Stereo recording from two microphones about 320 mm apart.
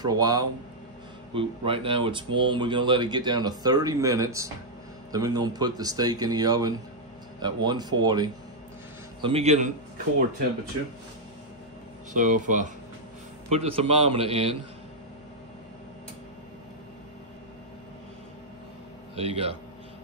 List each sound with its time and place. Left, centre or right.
0.0 s a man's voice: centre
12.1 s a man's voice: right
19.1 s speech: centre